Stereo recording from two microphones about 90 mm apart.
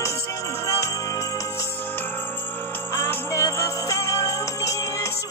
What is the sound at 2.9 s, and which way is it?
Music, 30° left (ahead or behind).